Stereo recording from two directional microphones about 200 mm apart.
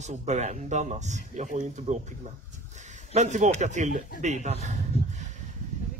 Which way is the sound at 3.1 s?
35° right (ahead or behind).